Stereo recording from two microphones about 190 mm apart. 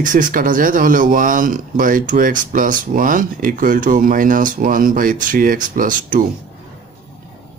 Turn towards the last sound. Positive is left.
turn(degrees=-45)  # may be behind; listen again after turning